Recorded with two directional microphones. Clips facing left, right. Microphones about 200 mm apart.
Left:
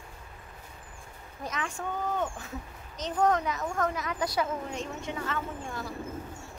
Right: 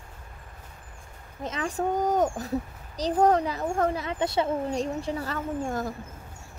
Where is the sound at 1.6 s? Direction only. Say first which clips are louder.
Right 9 dB; 40° right (ahead or behind).